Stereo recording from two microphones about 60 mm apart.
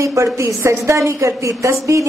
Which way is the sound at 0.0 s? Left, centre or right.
Right.